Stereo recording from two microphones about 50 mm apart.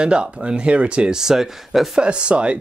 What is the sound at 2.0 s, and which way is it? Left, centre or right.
Speech, right.